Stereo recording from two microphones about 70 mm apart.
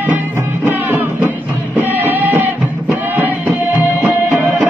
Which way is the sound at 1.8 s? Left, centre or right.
Right.